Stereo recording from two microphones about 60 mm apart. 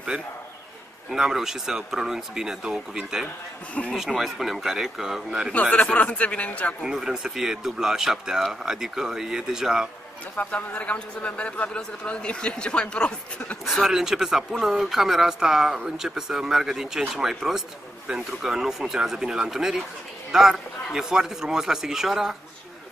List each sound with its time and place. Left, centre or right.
0.1 s speech: centre
5.5 s speech: left
6.8 s speech: centre
10.3 s speech: left
13.7 s speech: centre